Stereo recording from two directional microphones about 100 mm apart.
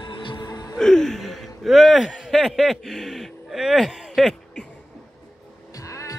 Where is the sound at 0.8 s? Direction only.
5° left (ahead or behind).